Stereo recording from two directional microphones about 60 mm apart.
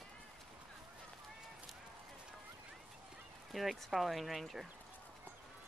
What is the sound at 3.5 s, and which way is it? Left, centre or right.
Speech, centre.